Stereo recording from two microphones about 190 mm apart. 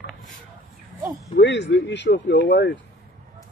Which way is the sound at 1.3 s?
70° left (ahead or behind).